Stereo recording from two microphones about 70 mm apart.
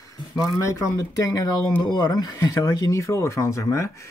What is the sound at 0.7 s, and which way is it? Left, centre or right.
Speech, left.